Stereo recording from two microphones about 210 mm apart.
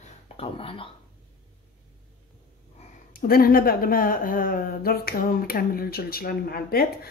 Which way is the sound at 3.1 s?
45° left (ahead or behind).